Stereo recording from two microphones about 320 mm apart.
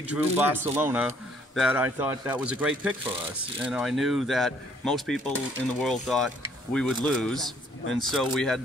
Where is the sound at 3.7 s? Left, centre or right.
Centre.